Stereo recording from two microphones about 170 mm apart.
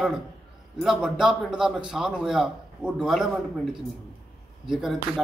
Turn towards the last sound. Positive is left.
turn(degrees=0)  # may be behind; listen again after turning